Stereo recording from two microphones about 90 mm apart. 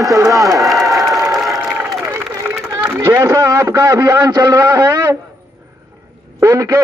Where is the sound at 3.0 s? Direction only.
40° right (ahead or behind).